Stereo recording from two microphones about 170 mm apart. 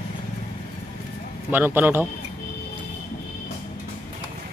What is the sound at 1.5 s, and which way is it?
Speech, 10° right (ahead or behind).